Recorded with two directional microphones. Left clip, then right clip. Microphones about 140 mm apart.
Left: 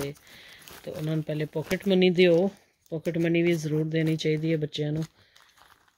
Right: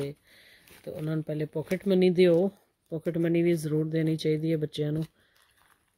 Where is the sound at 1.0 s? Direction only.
45° right (ahead or behind).